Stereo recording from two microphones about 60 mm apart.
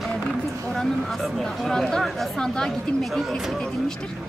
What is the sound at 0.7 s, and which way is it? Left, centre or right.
Speech, centre.